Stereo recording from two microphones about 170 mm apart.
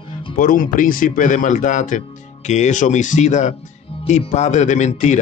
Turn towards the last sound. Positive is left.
turn(degrees=45)  # may be behind; listen again after turning